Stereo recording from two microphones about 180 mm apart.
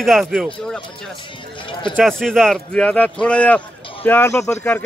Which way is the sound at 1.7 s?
25° left (ahead or behind).